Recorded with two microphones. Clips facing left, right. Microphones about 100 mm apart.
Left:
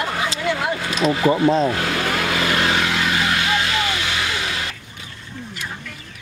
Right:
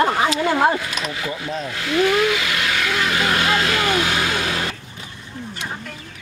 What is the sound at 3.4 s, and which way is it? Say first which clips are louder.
Vehicle: right 2 dB; 45° right (ahead or behind).